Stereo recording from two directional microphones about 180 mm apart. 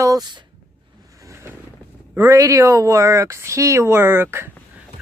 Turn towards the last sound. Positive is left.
turn(degrees=-10)  # may be behind; listen again after turning